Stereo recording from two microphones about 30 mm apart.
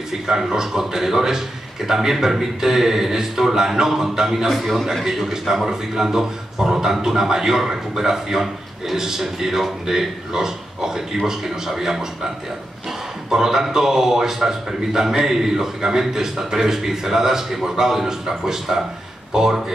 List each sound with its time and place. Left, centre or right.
0.3 s a man's voice: centre
4.5 s a man's voice: centre
5.0 s a man's voice: centre
13.3 s a man's voice: centre